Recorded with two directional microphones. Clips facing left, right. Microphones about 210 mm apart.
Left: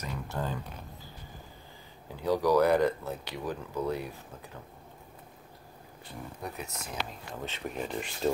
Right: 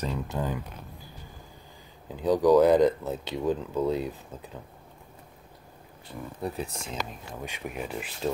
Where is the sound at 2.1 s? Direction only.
20° right (ahead or behind).